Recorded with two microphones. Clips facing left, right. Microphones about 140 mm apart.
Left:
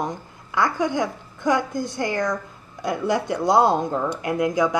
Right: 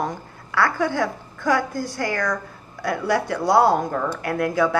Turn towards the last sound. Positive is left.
turn(degrees=15)  # may be behind; listen again after turning